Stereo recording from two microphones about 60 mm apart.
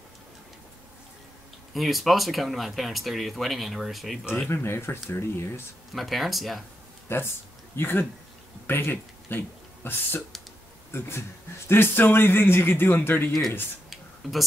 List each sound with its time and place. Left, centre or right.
1.7 s speech: centre
4.5 s speech: left
5.9 s speech: centre
7.1 s speech: left
13.8 s a sound: centre